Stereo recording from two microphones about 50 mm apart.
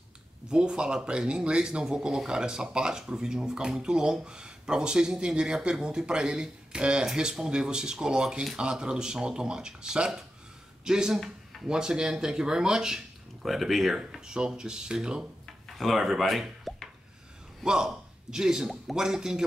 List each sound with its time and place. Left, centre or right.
0.5 s speech: centre
14.2 s speech: centre
15.4 s plop: centre
17.6 s speech: centre